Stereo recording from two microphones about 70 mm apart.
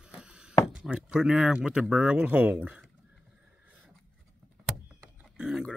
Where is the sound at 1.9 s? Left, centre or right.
Centre.